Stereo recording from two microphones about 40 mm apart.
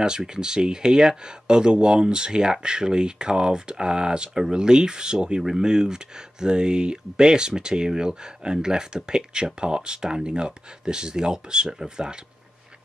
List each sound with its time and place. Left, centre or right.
0.0 s speech: centre